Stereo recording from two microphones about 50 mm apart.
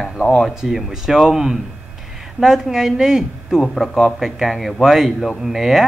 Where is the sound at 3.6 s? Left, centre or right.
Centre.